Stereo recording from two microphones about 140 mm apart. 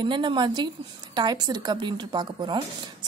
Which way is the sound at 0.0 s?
35° right (ahead or behind).